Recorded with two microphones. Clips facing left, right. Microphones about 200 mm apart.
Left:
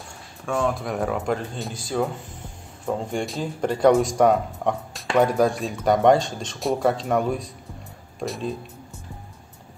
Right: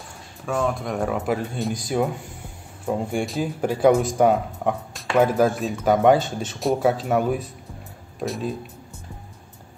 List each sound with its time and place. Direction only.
0.5 s speech: centre (ahead or behind)